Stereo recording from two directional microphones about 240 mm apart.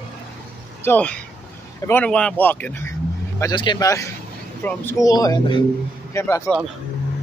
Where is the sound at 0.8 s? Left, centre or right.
Centre.